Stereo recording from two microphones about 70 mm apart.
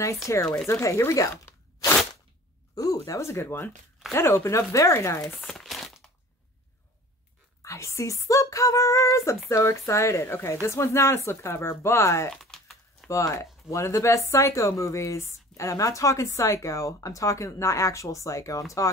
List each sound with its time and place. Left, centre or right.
0.3 s speech: left
2.7 s a sound: left
3.2 s speech: left
5.4 s crumpling: centre
7.6 s speech: left
12.3 s typing: centre
13.1 s speech: left